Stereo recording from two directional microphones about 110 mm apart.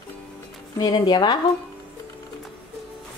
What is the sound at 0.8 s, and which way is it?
Speech, 40° left (ahead or behind).